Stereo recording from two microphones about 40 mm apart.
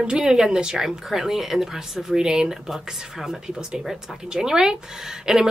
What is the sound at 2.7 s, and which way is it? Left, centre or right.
Speech, centre.